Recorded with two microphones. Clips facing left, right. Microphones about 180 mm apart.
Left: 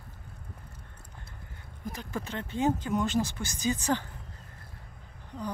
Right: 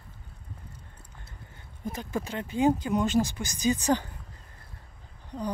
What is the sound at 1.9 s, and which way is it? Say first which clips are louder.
Speech: right 3 dB; 15° right (ahead or behind).